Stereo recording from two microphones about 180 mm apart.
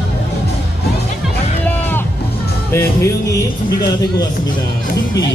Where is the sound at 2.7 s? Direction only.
15° left (ahead or behind).